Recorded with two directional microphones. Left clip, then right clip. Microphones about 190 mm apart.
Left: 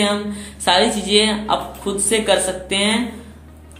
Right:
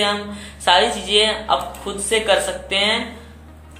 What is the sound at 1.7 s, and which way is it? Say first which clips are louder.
Speech: left 1 dB; centre (ahead or behind).